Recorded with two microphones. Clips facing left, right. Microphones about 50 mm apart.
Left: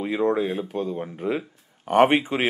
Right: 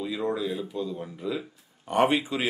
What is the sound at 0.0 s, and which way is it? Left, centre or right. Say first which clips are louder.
Speech: left 6 dB; left.